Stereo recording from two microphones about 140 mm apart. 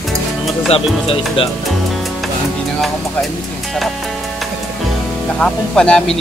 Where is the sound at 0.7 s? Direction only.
45° left (ahead or behind).